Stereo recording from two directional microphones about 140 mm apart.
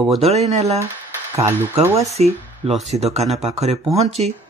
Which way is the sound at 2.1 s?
50° right (ahead or behind).